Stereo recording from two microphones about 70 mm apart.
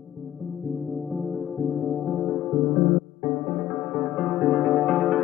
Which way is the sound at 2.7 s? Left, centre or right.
Left.